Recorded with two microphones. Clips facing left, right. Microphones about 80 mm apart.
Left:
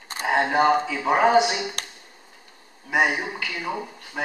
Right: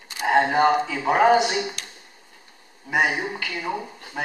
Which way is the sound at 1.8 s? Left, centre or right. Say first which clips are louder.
Left 3 dB; left.